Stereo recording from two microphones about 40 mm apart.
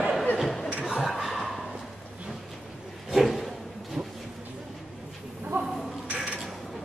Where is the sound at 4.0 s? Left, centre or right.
Centre.